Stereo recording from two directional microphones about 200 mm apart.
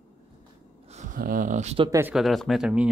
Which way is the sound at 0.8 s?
35° right (ahead or behind).